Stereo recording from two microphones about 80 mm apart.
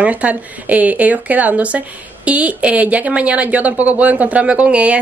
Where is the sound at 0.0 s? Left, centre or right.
Centre.